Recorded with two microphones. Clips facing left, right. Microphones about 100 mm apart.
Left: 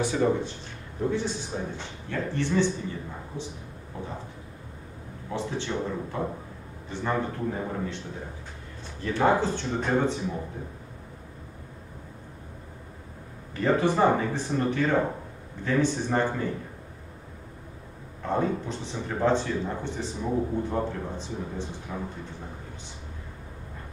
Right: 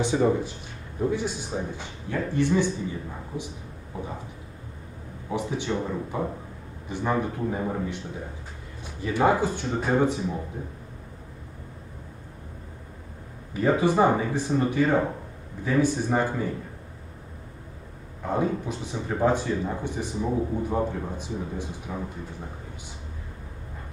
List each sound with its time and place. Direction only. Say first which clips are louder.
0.0 s speech: right 2 dB; 20° right (ahead or behind)
0.3 s a man's voice: right 1 dB; 10° right (ahead or behind)
5.3 s a man's voice: right 3 dB; 15° right (ahead or behind)
9.0 s a man's voice: right 1 dB; 10° right (ahead or behind)
13.6 s a man's voice: right 2 dB; 10° right (ahead or behind)
18.2 s a man's voice: right 1 dB; 10° right (ahead or behind)